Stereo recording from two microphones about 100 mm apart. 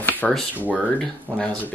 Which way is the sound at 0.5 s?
15° right (ahead or behind).